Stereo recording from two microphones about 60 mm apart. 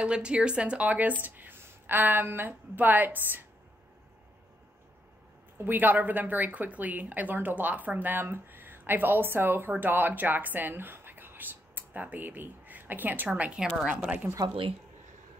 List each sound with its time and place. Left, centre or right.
0.0 s a woman's voice: centre; by 3.4 s right
5.6 s a woman's voice: right